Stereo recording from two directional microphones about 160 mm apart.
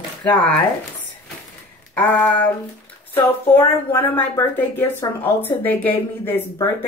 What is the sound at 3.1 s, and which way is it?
Speech, 15° left (ahead or behind).